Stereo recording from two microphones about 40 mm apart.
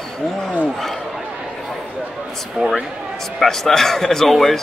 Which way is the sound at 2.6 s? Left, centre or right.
Right.